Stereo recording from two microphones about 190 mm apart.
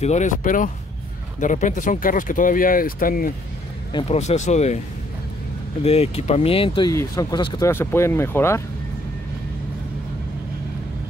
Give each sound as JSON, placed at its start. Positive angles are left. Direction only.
{"t": 0.0, "sound": "speech", "side_deg": 40}
{"t": 3.9, "sound": "speech", "side_deg": 35}
{"t": 5.8, "sound": "speech", "side_deg": 35}